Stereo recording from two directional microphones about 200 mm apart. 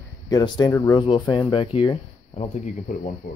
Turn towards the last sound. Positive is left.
turn(degrees=45)  # may be behind; listen again after turning